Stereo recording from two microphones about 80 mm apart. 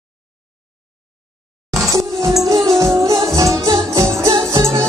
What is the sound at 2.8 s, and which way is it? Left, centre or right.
Music, right.